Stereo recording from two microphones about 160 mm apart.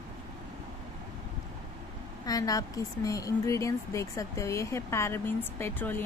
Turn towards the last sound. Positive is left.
turn(degrees=15)  # may be behind; listen again after turning